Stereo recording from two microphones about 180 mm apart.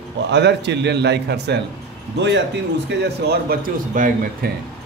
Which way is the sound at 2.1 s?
80° right.